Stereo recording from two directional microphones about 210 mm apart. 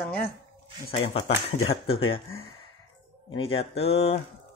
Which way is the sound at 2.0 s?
25° left (ahead or behind).